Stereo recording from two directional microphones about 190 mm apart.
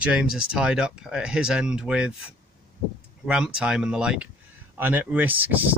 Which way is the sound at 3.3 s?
5° right (ahead or behind).